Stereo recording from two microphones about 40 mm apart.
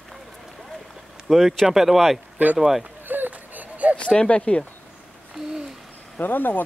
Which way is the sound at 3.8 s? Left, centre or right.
Right.